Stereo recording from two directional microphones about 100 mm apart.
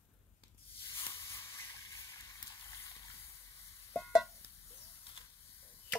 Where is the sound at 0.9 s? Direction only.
30° left (ahead or behind).